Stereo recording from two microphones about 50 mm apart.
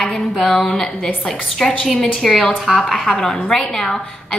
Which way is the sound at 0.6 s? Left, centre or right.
Centre.